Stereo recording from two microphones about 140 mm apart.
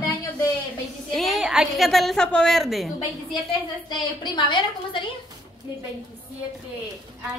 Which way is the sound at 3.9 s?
35° left (ahead or behind).